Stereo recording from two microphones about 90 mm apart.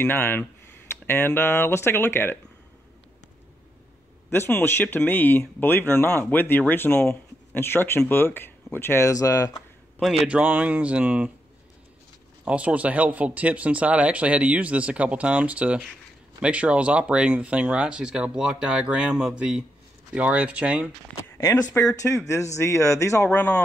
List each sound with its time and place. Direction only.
0.0 s speech: 25° left (ahead or behind)
4.3 s speech: 25° left (ahead or behind)
9.1 s speech: 40° left (ahead or behind)
9.9 s a man's voice: centre (ahead or behind)
10.2 s speech: 15° right (ahead or behind)
12.4 s speech: 15° right (ahead or behind)
22.0 s speech: 35° left (ahead or behind)
23.2 s speech: 15° left (ahead or behind)